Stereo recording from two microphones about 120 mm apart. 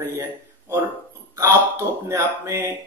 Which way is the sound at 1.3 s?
25° right (ahead or behind).